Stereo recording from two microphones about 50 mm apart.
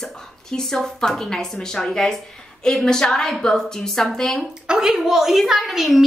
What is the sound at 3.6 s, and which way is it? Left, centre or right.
Speech, centre.